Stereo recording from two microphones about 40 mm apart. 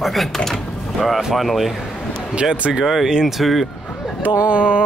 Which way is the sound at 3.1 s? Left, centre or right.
Centre.